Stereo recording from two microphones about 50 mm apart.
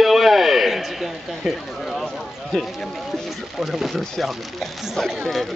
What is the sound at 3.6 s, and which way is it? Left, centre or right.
Speech, centre.